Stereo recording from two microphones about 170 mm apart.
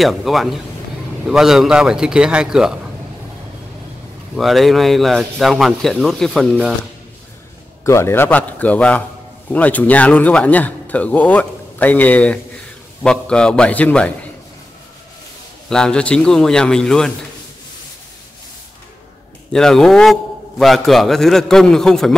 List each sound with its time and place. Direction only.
0.0 s a man's voice: centre (ahead or behind)
4.4 s a man's voice: centre (ahead or behind)
7.8 s a man's voice: 15° left (ahead or behind)
15.7 s a man's voice: 5° left (ahead or behind)
19.5 s a man's voice: 5° left (ahead or behind)